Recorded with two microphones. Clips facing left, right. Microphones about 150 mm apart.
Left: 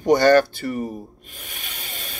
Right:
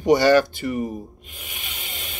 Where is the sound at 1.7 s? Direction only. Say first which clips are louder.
Left 1 dB; 20° right (ahead or behind).